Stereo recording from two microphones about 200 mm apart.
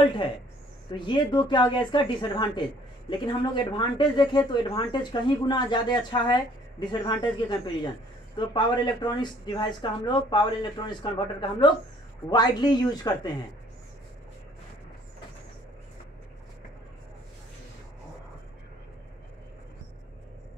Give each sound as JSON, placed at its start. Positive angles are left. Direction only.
{"t": 0.9, "sound": "speech", "side_deg": 25}